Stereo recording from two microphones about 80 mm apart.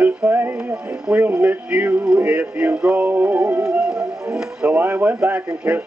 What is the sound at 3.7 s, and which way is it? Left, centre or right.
Music, centre.